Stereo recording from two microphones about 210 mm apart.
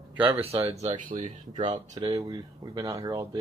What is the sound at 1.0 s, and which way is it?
Speech, 40° right (ahead or behind).